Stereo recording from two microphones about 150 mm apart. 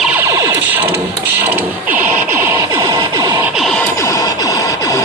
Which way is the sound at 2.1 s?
15° right (ahead or behind).